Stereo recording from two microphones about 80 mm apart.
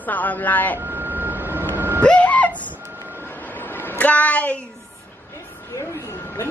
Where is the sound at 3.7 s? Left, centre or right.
Left.